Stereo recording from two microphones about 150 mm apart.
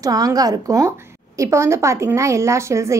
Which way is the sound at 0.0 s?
25° right (ahead or behind).